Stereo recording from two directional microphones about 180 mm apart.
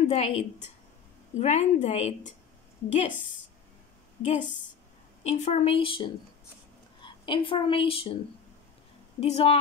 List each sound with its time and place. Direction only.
0.1 s a woman's voice: 35° left (ahead or behind)
9.2 s a woman's voice: 35° left (ahead or behind)